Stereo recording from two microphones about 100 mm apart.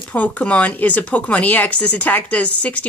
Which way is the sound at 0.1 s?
15° left (ahead or behind).